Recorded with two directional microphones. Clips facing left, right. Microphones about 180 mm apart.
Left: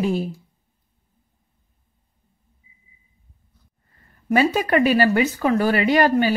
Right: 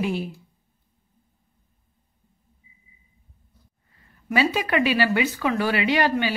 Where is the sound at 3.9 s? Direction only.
45° left (ahead or behind).